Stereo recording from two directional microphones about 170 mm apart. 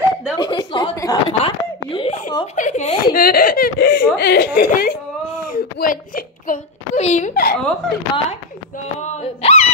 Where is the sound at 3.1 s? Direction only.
60° left (ahead or behind).